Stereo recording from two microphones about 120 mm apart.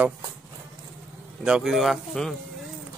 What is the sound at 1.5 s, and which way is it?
Speech, 5° right (ahead or behind).